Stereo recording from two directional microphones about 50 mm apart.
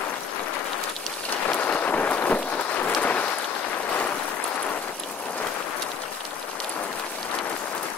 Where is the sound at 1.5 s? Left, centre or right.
Left.